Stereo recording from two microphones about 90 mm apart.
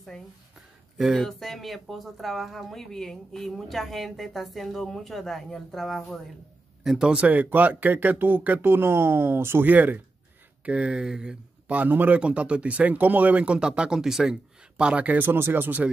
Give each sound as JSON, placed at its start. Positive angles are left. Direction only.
{"t": 0.9, "sound": "speech", "side_deg": 0}